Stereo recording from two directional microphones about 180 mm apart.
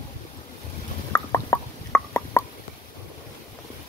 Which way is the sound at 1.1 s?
15° left (ahead or behind).